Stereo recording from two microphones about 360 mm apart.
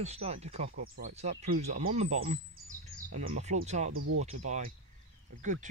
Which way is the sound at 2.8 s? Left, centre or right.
Centre.